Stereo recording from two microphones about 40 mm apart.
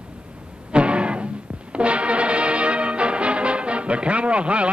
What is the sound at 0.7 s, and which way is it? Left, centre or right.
Music, right.